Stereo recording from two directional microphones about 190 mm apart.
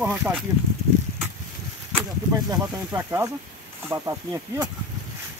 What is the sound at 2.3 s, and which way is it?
Speech, 15° right (ahead or behind).